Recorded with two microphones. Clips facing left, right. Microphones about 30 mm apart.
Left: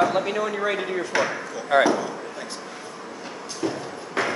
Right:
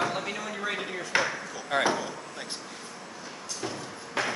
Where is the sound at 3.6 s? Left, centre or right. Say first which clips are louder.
Left 9 dB; centre.